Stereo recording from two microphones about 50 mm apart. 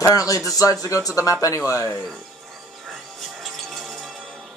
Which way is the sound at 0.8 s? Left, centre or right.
Left.